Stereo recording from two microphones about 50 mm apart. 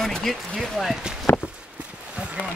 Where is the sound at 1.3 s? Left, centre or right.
Left.